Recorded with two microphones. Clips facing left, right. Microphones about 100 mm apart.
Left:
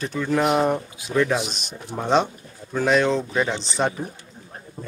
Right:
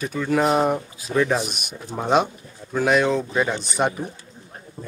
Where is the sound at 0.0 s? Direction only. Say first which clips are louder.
Right 1 dB; 10° right (ahead or behind).